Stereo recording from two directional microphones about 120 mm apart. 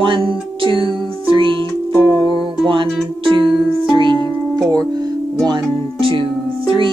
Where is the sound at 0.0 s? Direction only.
40° right (ahead or behind).